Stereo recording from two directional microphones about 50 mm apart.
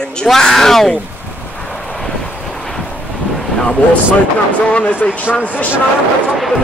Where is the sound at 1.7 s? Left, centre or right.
Centre.